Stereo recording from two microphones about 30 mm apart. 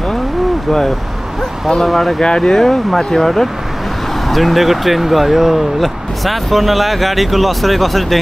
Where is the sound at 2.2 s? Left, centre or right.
Left; by 8.1 s centre.